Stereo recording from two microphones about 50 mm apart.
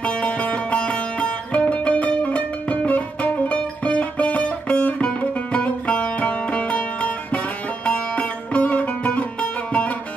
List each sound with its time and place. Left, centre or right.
0.0 s music: left